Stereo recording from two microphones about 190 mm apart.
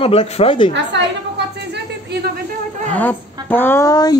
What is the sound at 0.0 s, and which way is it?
Speech, 30° left (ahead or behind).